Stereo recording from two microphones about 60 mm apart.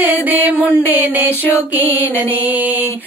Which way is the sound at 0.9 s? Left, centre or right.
Right.